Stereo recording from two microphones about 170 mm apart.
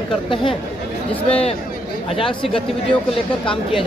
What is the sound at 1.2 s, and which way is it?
A man's voice, 35° left (ahead or behind).